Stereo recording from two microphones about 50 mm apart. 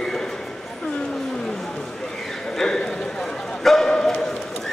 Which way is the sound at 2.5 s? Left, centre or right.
Centre.